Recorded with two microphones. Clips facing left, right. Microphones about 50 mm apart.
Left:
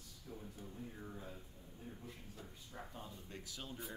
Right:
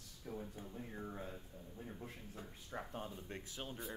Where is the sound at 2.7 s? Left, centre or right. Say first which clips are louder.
Right 6 dB; right.